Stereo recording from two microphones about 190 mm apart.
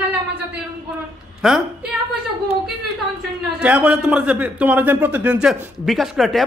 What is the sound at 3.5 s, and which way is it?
A man's voice, 5° right (ahead or behind).